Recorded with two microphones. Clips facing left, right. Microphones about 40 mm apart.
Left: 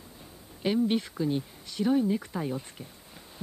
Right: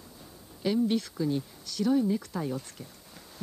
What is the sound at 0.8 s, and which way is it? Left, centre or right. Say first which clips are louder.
Speech: left 1 dB; left.